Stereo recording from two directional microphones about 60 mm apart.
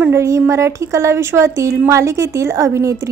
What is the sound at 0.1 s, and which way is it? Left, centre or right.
A woman's voice, right.